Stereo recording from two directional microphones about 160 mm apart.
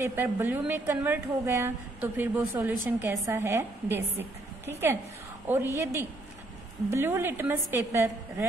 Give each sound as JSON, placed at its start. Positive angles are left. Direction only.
{"t": 0.0, "sound": "a woman's voice", "side_deg": -15}
{"t": 5.8, "sound": "a woman's voice", "side_deg": -15}